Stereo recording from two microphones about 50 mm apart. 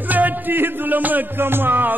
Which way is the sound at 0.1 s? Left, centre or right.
Right.